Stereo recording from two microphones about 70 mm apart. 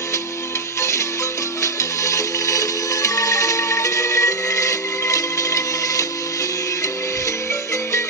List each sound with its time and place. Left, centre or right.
0.7 s music: left